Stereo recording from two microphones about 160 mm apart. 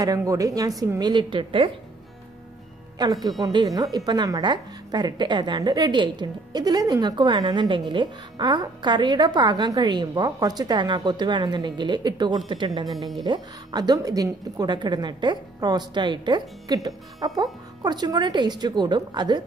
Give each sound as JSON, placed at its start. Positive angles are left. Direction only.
{"t": 0.0, "sound": "a woman's voice", "side_deg": -20}
{"t": 3.0, "sound": "a woman's voice", "side_deg": -25}